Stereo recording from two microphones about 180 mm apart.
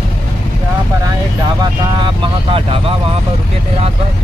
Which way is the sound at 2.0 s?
30° right (ahead or behind).